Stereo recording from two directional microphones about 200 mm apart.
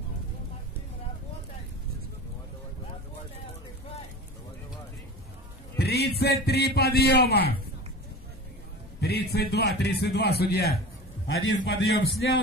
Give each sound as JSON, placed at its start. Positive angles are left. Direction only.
{"t": 5.8, "sound": "a man's voice", "side_deg": 55}
{"t": 9.0, "sound": "a man's voice", "side_deg": 50}
{"t": 11.3, "sound": "a man's voice", "side_deg": 65}